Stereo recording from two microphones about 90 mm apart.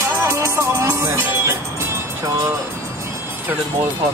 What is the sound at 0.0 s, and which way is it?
Music, 30° right (ahead or behind).